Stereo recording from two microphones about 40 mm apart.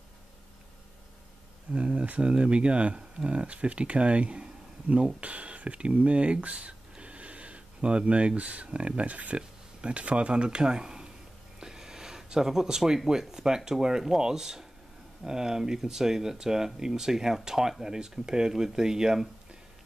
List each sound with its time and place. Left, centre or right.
1.7 s speech: right